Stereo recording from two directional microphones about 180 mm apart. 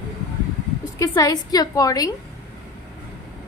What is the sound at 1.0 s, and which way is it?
A woman's voice, 20° left (ahead or behind).